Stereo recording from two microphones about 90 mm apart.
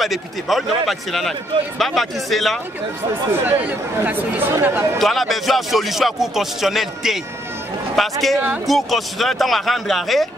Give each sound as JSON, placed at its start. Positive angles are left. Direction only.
{"t": 0.0, "sound": "a man's voice", "side_deg": 0}
{"t": 3.4, "sound": "speech", "side_deg": -20}
{"t": 4.9, "sound": "a man's voice", "side_deg": 0}